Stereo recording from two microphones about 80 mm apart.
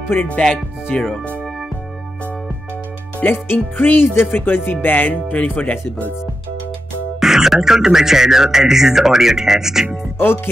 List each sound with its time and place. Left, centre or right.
0.3 s speech: centre
3.2 s speech: left
7.2 s speech: centre
10.1 s speech: left